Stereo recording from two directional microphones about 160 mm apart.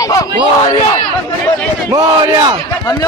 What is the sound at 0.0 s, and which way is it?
Battle cry, 20° left (ahead or behind).